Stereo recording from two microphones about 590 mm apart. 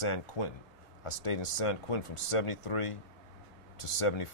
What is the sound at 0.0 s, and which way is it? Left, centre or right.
Speech, left.